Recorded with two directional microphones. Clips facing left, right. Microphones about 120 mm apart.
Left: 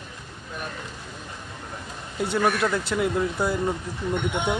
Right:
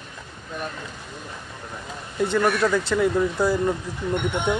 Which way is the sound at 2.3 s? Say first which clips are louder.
Right 2 dB; 5° left (ahead or behind).